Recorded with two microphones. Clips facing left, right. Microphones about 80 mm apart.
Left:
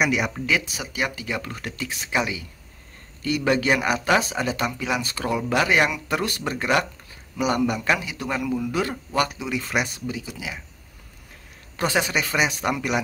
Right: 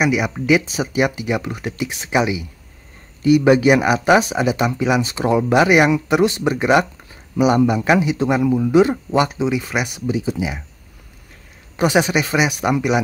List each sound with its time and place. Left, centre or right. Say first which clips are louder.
0.0 s speech: right 4 dB; centre
0.5 s speech: right 9 dB; right
9.5 s speech: right 4 dB; centre
9.9 s speech: right 10 dB; right
11.7 s speech: right 7 dB; centre